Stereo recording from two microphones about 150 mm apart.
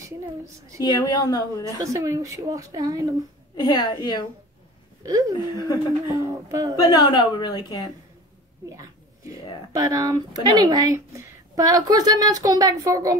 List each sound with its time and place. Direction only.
0.8 s a woman's voice: 25° left (ahead or behind)
1.8 s a woman's voice: 20° right (ahead or behind)
3.6 s a woman's voice: 30° left (ahead or behind)
5.0 s a woman's voice: 20° right (ahead or behind)
6.8 s a woman's voice: 30° left (ahead or behind)
8.6 s a sound: 20° right (ahead or behind)
9.7 s a woman's voice: 20° right (ahead or behind)